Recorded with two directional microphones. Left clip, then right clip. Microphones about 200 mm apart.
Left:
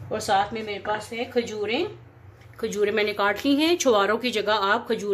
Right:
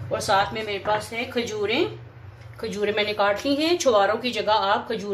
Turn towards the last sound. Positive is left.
turn(degrees=50)  # may be behind; listen again after turning